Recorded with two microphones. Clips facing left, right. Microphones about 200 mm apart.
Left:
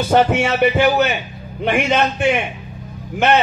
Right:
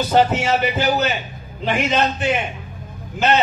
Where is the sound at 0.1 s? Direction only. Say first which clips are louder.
Left 2 dB; 65° left (ahead or behind).